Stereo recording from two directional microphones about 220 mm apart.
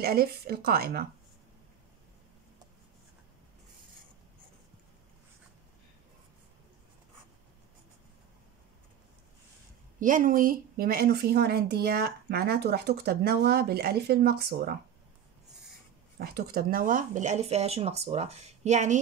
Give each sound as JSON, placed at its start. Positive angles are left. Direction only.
{"t": 0.0, "sound": "a woman's voice", "side_deg": -45}
{"t": 9.9, "sound": "a woman's voice", "side_deg": -35}
{"t": 16.2, "sound": "speech", "side_deg": -45}